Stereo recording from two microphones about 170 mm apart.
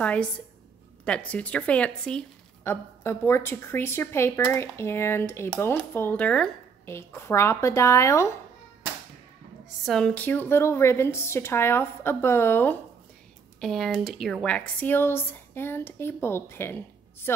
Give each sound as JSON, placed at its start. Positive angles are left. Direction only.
{"t": 0.0, "sound": "a woman's voice", "side_deg": 5}
{"t": 9.8, "sound": "a woman's voice", "side_deg": 5}
{"t": 13.6, "sound": "a woman's voice", "side_deg": 0}